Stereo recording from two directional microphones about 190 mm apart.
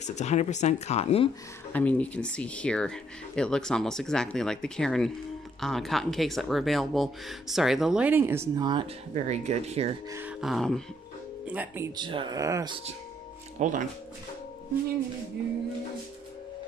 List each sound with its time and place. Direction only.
0.0 s speech: 35° left (ahead or behind)
1.7 s speech: 10° left (ahead or behind); by 8.8 s 20° right (ahead or behind)
9.1 s speech: 35° right (ahead or behind)
10.4 s speech: centre (ahead or behind)
12.0 s speech: 25° right (ahead or behind)
13.6 s speech: 40° right (ahead or behind)